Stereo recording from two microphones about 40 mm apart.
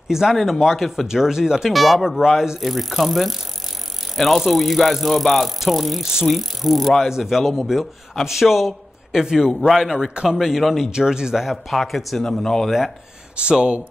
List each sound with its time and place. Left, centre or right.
0.1 s speech: centre
0.4 s bicycle: centre
1.0 s speech: centre
2.6 s bicycle: centre
7.1 s a man's voice: centre
9.7 s bicycle: centre
10.9 s speech: centre
11.5 s bicycle: centre
13.4 s speech: right